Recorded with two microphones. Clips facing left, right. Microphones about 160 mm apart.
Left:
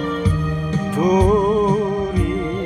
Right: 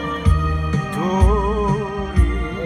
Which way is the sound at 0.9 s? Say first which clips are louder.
Left 6 dB; 15° left (ahead or behind).